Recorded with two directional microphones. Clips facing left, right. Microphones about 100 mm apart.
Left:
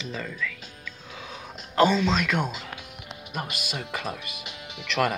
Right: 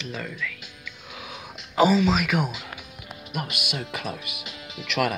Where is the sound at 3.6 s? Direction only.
5° right (ahead or behind).